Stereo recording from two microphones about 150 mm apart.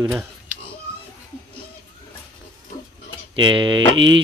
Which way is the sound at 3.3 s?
30° right (ahead or behind).